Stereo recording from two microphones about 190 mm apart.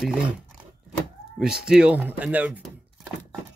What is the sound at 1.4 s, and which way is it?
Speech, 5° right (ahead or behind).